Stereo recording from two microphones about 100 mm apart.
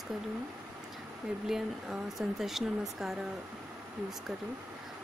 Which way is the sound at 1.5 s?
5° right (ahead or behind).